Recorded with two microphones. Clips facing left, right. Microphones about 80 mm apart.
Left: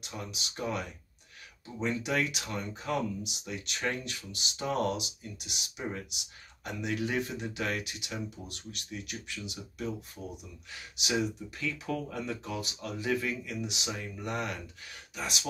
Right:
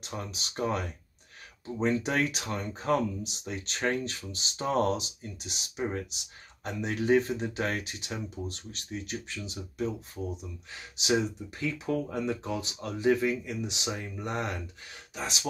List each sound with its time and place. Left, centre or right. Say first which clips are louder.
0.0 s speech: right 3 dB; right